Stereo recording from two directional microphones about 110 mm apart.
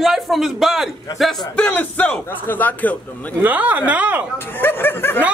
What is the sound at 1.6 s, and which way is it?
Speech, 15° left (ahead or behind).